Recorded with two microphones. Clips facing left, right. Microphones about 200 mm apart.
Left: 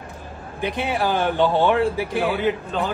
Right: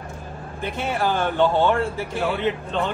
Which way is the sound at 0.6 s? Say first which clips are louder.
Left 2 dB; 15° left (ahead or behind).